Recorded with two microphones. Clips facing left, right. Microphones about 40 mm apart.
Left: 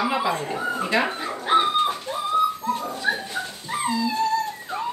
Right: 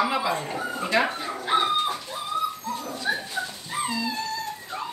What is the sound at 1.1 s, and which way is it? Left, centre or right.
Speech, left.